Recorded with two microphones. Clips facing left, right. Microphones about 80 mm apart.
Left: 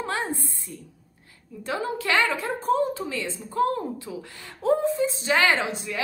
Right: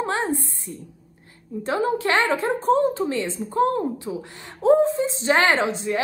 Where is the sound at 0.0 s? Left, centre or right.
Right.